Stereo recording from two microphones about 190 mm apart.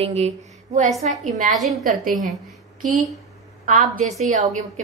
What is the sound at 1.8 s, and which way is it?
Speech, 45° right (ahead or behind).